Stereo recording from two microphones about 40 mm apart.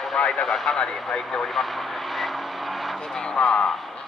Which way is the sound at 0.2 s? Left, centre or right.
Left.